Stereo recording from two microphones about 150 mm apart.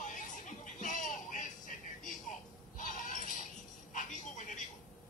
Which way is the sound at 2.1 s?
60° left (ahead or behind).